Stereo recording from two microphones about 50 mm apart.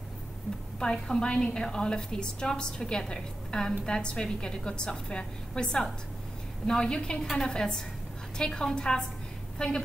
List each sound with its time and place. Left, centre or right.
0.7 s a woman's voice: centre